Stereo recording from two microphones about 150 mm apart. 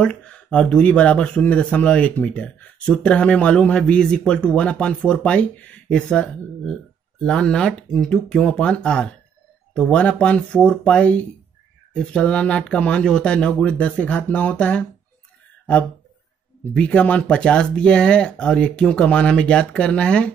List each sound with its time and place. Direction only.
0.0 s speech: 5° left (ahead or behind)
16.7 s speech: 10° left (ahead or behind)